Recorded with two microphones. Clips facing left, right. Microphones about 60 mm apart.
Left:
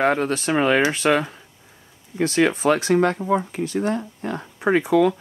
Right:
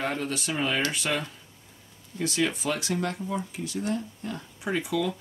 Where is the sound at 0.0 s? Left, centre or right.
Left.